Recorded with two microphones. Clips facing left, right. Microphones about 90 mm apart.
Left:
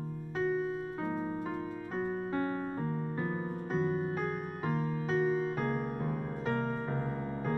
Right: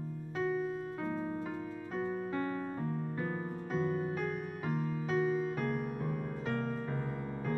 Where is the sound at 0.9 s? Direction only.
25° left (ahead or behind).